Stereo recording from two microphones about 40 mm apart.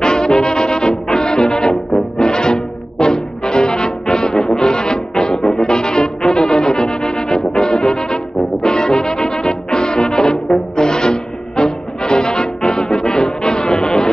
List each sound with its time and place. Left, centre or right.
0.0 s music: centre